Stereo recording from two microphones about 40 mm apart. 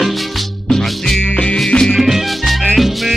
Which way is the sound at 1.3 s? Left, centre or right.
Left.